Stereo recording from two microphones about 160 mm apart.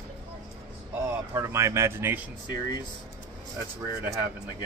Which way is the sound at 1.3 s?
20° right (ahead or behind).